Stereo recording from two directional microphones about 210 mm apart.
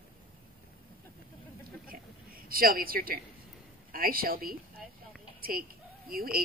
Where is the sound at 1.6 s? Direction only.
45° right (ahead or behind).